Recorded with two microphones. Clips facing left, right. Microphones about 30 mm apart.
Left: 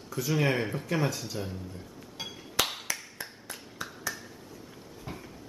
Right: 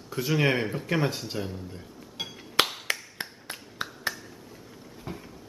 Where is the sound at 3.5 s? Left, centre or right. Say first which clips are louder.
Right 4 dB; right.